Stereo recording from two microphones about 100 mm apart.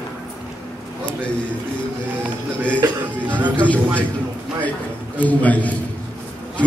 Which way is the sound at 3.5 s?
15° left (ahead or behind).